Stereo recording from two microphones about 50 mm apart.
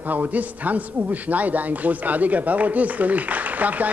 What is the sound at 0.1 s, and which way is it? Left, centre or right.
Speech, right.